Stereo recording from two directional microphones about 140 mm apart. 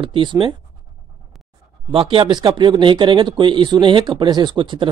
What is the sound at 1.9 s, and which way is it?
Speech, 40° right (ahead or behind).